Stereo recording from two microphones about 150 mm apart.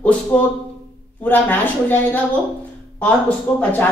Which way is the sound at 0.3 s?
5° left (ahead or behind).